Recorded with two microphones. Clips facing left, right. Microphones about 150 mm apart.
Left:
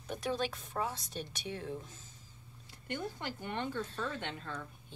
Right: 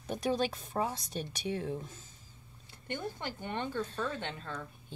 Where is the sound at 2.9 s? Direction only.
25° right (ahead or behind).